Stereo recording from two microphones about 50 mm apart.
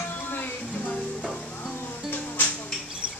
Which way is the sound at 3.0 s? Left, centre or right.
Right.